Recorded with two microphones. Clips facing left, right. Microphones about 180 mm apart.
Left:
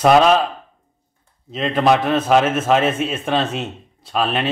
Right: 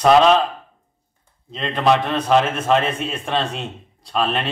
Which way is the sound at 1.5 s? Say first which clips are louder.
Left 2 dB; 5° left (ahead or behind).